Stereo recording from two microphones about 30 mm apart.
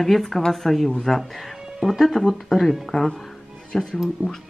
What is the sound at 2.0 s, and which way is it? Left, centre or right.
Speech, centre.